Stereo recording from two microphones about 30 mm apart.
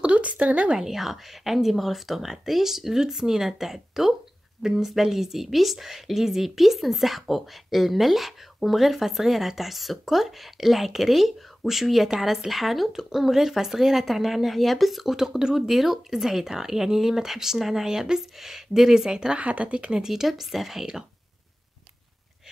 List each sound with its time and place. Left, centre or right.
0.2 s speech: right
0.7 s a woman's voice: centre
15.1 s speech: right
15.6 s speech: centre
17.8 s speech: right
19.3 s speech: right
20.0 s speech: centre